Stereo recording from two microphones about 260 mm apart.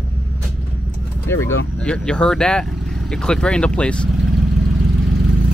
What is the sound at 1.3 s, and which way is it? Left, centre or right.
Speech, centre.